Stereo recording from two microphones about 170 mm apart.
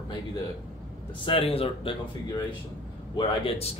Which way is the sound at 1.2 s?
35° left (ahead or behind).